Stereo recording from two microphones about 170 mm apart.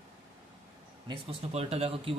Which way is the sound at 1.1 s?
35° right (ahead or behind).